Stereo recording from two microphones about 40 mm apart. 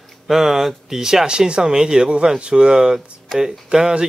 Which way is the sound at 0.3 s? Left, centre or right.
Centre.